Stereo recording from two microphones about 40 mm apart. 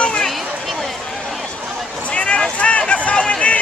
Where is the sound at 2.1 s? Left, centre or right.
Left.